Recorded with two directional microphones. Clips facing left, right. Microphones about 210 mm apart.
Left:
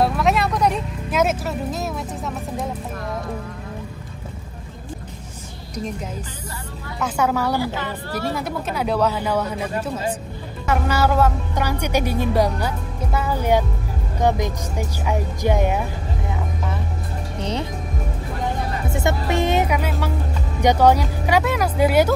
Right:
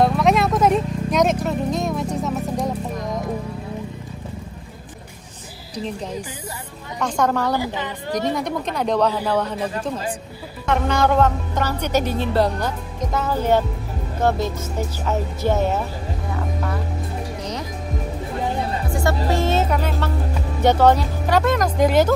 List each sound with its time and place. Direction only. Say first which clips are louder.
0.0 s speech: right 2 dB; centre (ahead or behind)
7.0 s speech: right 1 dB; 5° left (ahead or behind)
7.5 s speech: even; 15° right (ahead or behind)
8.4 s speech: right 1 dB; 5° left (ahead or behind)
10.6 s speech: right 1 dB; 5° left (ahead or behind)
17.4 s music: left 8 dB; 30° left (ahead or behind)
18.9 s speech: even; 20° left (ahead or behind)